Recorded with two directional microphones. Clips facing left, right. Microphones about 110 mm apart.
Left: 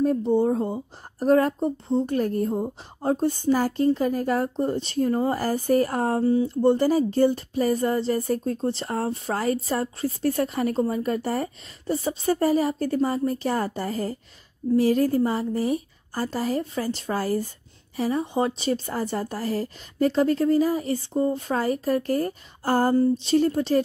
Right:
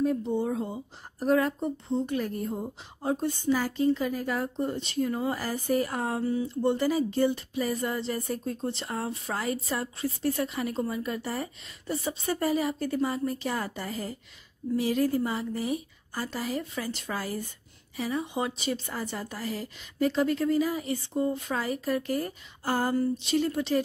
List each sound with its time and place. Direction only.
0.0 s speech: 40° left (ahead or behind)